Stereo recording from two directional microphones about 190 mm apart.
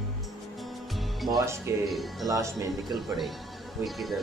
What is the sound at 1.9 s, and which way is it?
Speech, centre (ahead or behind).